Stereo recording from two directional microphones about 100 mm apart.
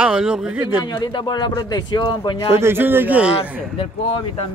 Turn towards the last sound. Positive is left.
turn(degrees=65)  # may be behind; listen again after turning